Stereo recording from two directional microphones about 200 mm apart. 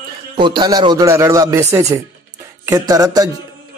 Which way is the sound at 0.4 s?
20° right (ahead or behind).